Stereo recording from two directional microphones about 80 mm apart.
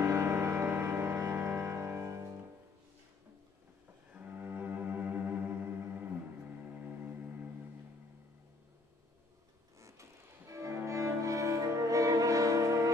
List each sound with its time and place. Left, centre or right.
0.0 s music: right
4.1 s cello: right
9.8 s music: right